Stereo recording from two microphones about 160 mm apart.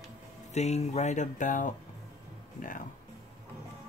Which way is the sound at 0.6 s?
45° left (ahead or behind).